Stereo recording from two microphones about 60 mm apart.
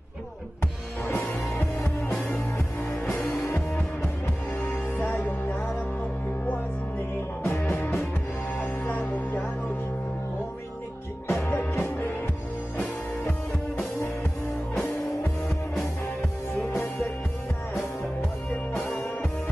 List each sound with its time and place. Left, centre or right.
1.0 s music: left
4.6 s music: left
7.4 s music: left
11.2 s music: left
16.7 s music: left